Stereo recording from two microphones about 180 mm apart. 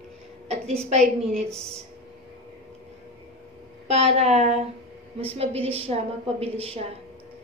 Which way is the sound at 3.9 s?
35° right (ahead or behind).